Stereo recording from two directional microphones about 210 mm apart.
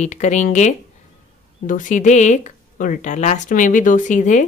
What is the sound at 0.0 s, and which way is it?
A woman's voice, 35° left (ahead or behind).